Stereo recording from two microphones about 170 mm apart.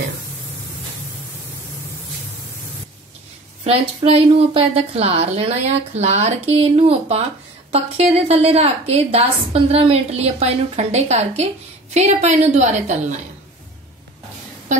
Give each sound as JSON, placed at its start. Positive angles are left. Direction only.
{"t": 3.6, "sound": "a woman's voice", "side_deg": -35}